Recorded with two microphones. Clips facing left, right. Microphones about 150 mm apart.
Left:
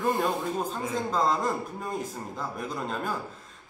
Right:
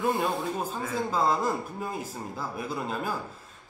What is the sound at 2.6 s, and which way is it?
Speech, 5° right (ahead or behind).